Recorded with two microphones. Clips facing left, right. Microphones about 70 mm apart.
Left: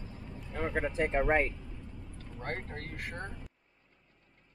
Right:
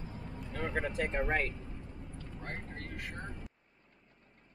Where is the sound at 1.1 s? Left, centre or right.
Left.